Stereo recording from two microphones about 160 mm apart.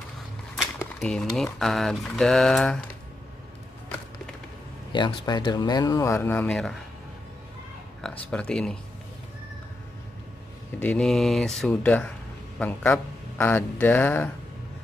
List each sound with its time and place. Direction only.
1.0 s speech: 5° left (ahead or behind)
4.9 s speech: 30° left (ahead or behind); by 6.8 s 5° left (ahead or behind)
8.0 s speech: 5° left (ahead or behind)
10.8 s speech: 5° left (ahead or behind)